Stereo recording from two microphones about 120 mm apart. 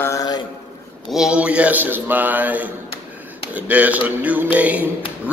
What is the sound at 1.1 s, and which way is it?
Music, 5° right (ahead or behind).